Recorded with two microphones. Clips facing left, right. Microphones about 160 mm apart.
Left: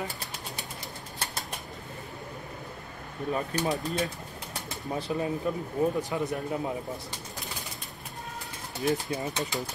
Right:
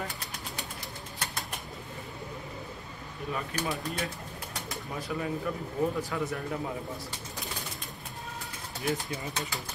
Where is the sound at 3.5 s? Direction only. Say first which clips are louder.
Left 4 dB; 30° left (ahead or behind).